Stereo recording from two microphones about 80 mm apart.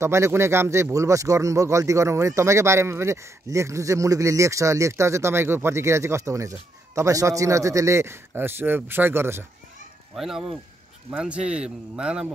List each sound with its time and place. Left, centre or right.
0.0 s speech: right
10.1 s a man's voice: centre